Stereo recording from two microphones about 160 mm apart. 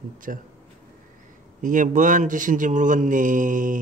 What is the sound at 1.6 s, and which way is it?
Speech, 55° right (ahead or behind).